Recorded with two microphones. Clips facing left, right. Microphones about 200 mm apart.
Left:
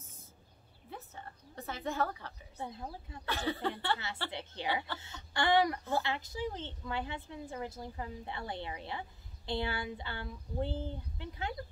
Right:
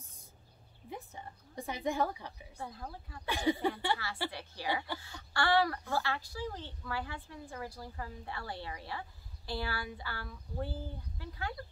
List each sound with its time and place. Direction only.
0.8 s a woman's voice: 15° right (ahead or behind)
2.5 s speech: 20° left (ahead or behind)
3.3 s a woman's voice: 15° right (ahead or behind)
4.3 s speech: 20° left (ahead or behind)